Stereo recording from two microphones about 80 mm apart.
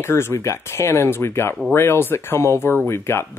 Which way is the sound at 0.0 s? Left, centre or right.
Left.